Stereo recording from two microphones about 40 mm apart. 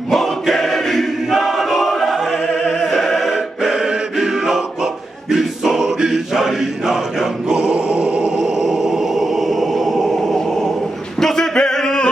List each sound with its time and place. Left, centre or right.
0.1 s choir: centre
2.1 s opera: centre
3.0 s choir: centre
3.3 s choir: centre
6.0 s chant: centre
7.4 s choir: right
7.7 s a sound: right
8.4 s a sound: centre